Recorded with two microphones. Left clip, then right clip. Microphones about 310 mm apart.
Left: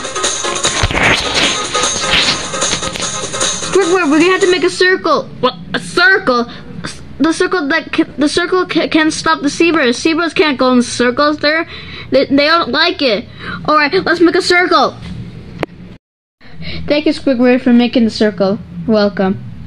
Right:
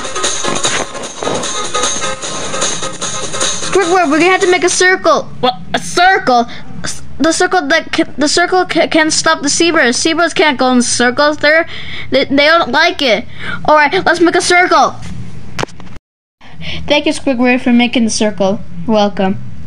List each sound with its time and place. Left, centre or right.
0.0 s music: centre
3.9 s a sound: right
4.6 s a woman's voice: right
16.6 s speech: centre